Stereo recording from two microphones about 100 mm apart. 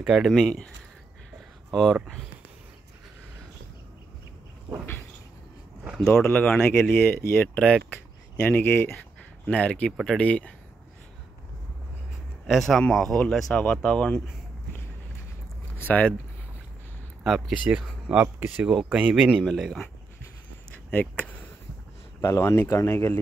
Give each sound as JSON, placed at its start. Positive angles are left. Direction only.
{"t": 0.0, "sound": "speech", "side_deg": -5}
{"t": 1.7, "sound": "speech", "side_deg": 0}
{"t": 5.9, "sound": "speech", "side_deg": 5}
{"t": 6.2, "sound": "speech", "side_deg": 20}
{"t": 12.4, "sound": "speech", "side_deg": 0}
{"t": 15.8, "sound": "speech", "side_deg": 15}
{"t": 17.2, "sound": "speech", "side_deg": -5}
{"t": 18.2, "sound": "speech", "side_deg": -25}
{"t": 18.9, "sound": "speech", "side_deg": -10}
{"t": 19.4, "sound": "speech", "side_deg": 0}
{"t": 20.7, "sound": "a sound", "side_deg": 15}
{"t": 22.2, "sound": "speech", "side_deg": 30}